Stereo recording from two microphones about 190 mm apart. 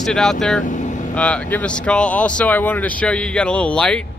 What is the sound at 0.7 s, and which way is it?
Vehicle, 40° left (ahead or behind).